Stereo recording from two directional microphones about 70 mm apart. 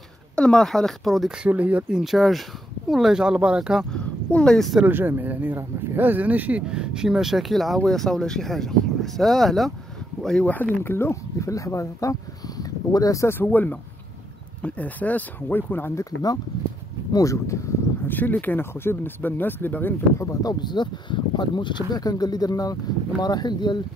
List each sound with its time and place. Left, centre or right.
0.4 s speech: centre
1.4 s speech: right
2.0 s speech: centre
3.9 s speech: centre
4.8 s speech: right
6.7 s speech: centre
10.4 s speech: left
11.3 s speech: left
13.3 s speech: left
16.0 s speech: left
17.1 s speech: left
18.0 s speech: left
20.4 s speech: left
23.2 s speech: left